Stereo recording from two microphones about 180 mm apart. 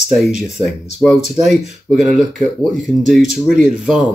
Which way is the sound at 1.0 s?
5° left (ahead or behind).